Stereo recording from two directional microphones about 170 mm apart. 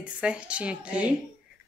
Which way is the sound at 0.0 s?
5° right (ahead or behind).